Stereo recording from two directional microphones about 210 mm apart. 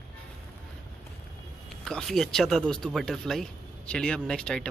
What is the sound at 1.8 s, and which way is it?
A man's voice, centre (ahead or behind).